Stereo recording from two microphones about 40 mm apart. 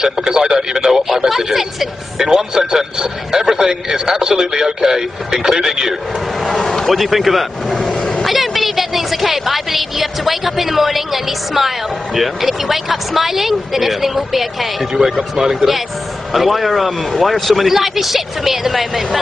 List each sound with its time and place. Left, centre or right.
0.0 s a man's voice: centre
6.5 s speech: centre
6.9 s speech: centre